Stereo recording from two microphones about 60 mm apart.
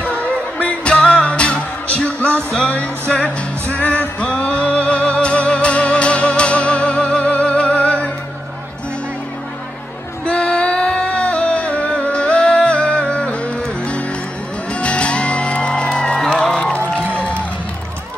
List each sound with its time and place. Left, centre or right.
0.2 s music: left
3.1 s music: centre
3.7 s music: left
10.2 s female singing: centre
11.1 s music: left
14.7 s music: centre
16.5 s run: centre